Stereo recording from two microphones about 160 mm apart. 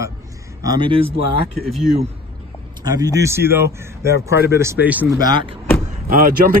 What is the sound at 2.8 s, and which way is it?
Speech, 25° right (ahead or behind).